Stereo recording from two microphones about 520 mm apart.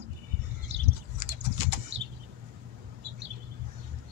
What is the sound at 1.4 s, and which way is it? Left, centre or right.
Typing, right.